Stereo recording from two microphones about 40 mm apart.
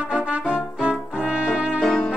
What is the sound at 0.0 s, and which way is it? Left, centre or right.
Brass instrument, right.